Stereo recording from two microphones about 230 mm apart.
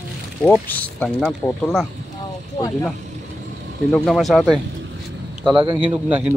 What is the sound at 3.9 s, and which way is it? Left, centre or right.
Speech, centre.